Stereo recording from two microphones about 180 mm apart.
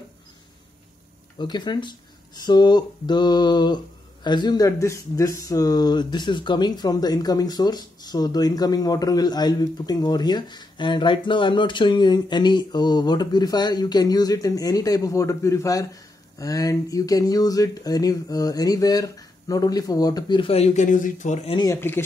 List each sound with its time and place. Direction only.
1.4 s speech: 25° left (ahead or behind)
21.5 s speech: 15° left (ahead or behind)